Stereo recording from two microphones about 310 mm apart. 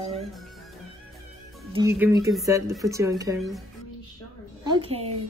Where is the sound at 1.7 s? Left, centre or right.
Centre.